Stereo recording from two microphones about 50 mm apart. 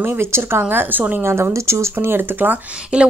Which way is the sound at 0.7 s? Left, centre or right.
Right.